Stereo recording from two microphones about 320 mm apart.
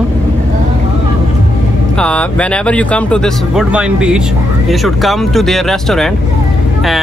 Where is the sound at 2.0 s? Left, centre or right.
Centre.